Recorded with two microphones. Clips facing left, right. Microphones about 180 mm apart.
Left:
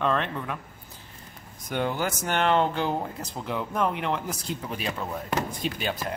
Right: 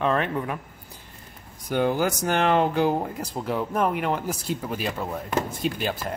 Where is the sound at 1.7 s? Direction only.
10° right (ahead or behind).